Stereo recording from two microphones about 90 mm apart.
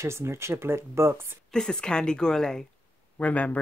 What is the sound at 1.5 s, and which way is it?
A woman's voice, 10° left (ahead or behind).